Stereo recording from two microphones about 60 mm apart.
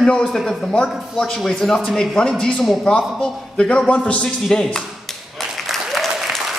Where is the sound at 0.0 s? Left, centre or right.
Centre.